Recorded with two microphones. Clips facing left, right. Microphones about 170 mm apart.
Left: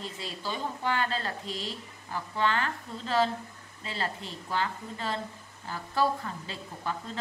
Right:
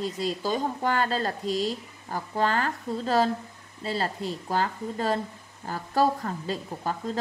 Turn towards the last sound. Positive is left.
turn(degrees=-40)  # may be behind; listen again after turning